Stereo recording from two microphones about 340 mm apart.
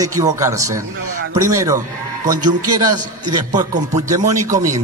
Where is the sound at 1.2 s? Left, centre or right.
Right.